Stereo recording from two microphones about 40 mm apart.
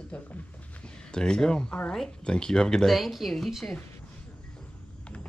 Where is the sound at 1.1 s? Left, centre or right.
Centre.